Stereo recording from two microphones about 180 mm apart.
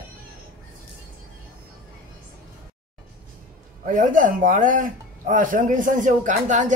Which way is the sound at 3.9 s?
45° right (ahead or behind).